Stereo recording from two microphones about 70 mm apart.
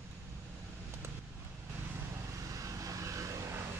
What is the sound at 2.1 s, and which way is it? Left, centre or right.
Vehicle, right.